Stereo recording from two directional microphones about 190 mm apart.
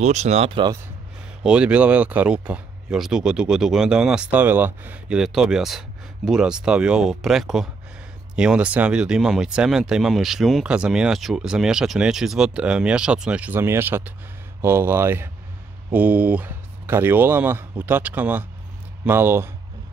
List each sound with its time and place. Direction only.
0.0 s speech: 35° right (ahead or behind)
1.4 s speech: 5° right (ahead or behind)